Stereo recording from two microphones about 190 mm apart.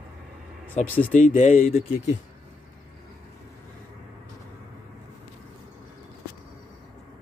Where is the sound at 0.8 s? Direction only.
40° left (ahead or behind).